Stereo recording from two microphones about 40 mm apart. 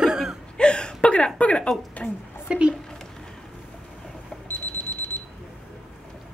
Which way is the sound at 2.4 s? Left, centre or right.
Right.